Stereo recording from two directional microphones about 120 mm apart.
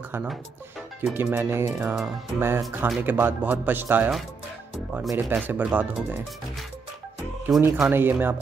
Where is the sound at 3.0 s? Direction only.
15° right (ahead or behind).